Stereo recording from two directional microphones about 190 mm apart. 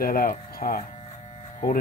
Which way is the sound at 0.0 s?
50° left (ahead or behind).